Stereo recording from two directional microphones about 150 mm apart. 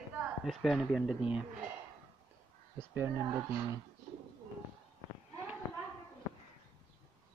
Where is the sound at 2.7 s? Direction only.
15° right (ahead or behind).